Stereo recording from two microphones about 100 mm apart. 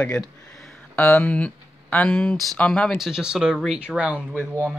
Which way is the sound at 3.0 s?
5° right (ahead or behind).